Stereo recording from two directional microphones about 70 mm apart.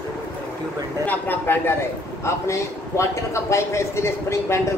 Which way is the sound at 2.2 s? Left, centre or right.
Left.